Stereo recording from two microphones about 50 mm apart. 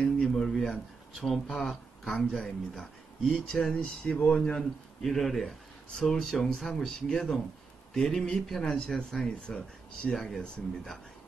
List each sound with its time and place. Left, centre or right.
0.2 s a sound: centre
1.2 s speech: centre
10.1 s speech: centre